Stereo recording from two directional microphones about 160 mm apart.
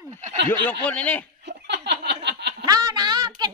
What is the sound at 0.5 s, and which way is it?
Speech, 10° left (ahead or behind).